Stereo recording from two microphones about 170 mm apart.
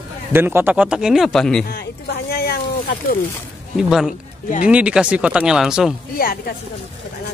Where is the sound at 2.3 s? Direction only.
65° left (ahead or behind).